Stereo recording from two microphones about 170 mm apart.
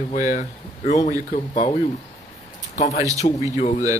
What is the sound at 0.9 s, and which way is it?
Speech, 45° left (ahead or behind).